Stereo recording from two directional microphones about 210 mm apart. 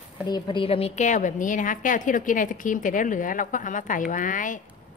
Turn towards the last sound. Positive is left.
turn(degrees=40)  # may be behind; listen again after turning